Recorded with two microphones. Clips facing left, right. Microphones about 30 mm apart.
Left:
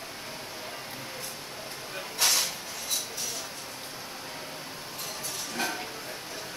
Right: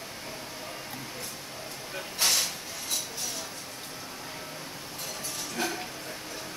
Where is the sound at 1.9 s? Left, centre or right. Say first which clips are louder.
Even; centre.